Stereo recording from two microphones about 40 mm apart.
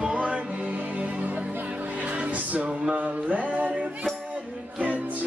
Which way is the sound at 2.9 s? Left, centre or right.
Right.